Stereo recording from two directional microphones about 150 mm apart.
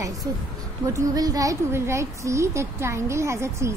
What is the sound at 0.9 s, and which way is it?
A woman's voice, 25° right (ahead or behind).